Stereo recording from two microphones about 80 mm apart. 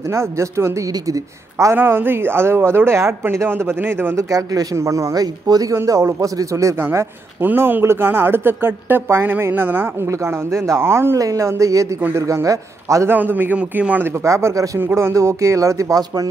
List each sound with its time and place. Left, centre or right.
0.1 s speech: right
1.8 s speech: right
4.3 s speech: right
13.1 s a man's voice: right
14.2 s speech: right
14.8 s speech: right